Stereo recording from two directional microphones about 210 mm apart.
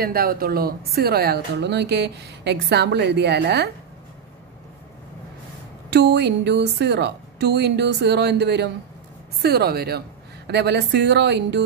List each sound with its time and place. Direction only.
0.0 s a woman's voice: 45° right (ahead or behind)
5.9 s a woman's voice: 55° right (ahead or behind)